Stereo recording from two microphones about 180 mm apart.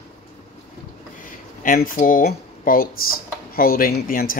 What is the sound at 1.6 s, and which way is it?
Speech, 50° left (ahead or behind).